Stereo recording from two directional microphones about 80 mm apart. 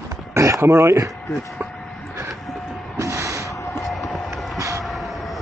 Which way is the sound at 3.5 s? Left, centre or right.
Left.